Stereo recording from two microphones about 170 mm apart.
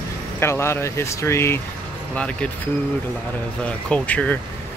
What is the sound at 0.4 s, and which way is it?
Speech, 15° left (ahead or behind).